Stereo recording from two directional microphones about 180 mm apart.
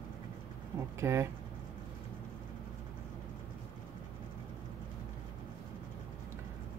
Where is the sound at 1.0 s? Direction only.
15° right (ahead or behind).